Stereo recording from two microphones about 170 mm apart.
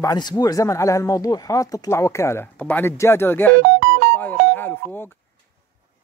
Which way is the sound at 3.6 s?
90° right.